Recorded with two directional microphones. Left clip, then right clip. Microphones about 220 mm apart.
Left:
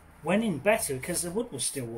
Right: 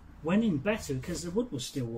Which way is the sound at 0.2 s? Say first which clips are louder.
Left 3 dB; 15° left (ahead or behind).